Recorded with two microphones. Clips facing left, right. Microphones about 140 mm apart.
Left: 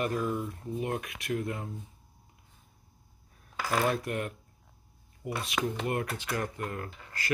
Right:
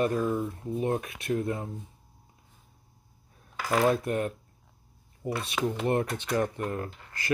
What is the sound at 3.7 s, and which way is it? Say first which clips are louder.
Speech: right 5 dB; 25° right (ahead or behind).